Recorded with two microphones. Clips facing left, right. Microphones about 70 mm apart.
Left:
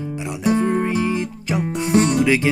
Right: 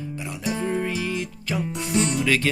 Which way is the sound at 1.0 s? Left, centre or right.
Left.